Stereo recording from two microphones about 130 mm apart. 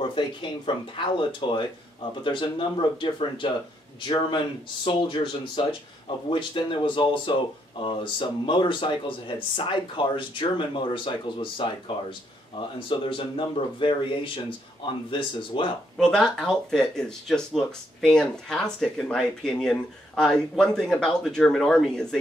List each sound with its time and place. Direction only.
0.1 s speech: 40° left (ahead or behind)
16.0 s speech: 5° left (ahead or behind)